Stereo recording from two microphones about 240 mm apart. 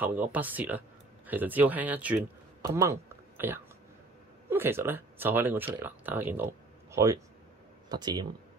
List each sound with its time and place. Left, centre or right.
0.0 s speech: centre